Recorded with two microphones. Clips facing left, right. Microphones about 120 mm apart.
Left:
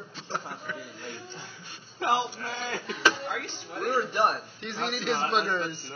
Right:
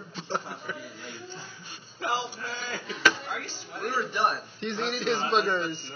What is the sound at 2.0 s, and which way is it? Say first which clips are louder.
Speech: left 4 dB; 55° left (ahead or behind).